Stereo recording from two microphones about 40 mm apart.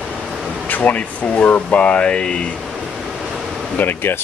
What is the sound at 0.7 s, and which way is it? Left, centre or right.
Speech, left.